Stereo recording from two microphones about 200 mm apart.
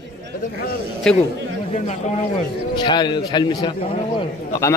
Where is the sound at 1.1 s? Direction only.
5° left (ahead or behind).